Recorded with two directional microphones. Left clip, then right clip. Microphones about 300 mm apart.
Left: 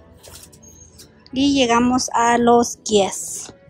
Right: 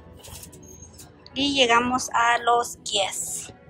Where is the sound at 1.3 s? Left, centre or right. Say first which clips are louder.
Left 3 dB; centre.